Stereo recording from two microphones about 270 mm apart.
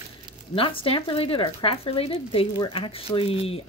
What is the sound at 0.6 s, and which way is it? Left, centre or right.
Speech, centre.